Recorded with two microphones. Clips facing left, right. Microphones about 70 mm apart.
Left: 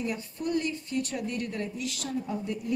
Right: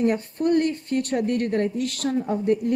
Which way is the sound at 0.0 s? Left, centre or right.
Right.